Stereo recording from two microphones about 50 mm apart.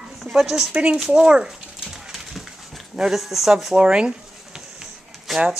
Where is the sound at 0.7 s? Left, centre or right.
Right.